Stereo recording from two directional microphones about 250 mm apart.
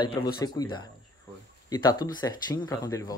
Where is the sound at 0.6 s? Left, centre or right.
Centre.